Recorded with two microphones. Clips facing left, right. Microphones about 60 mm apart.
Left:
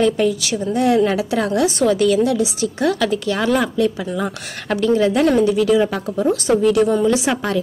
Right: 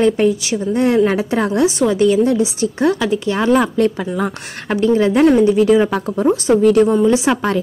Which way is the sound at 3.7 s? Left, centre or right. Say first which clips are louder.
Right 3 dB; right.